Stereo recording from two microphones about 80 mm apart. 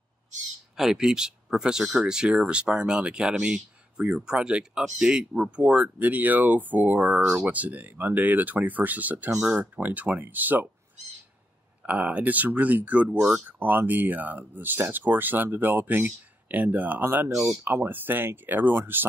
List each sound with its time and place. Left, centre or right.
0.7 s speech: centre; by 10.7 s right
11.8 s speech: centre